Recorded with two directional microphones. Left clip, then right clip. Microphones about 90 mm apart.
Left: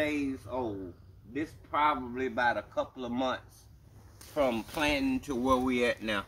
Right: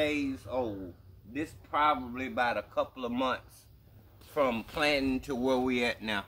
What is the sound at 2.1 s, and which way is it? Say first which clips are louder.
Speech: left 1 dB; 40° right (ahead or behind).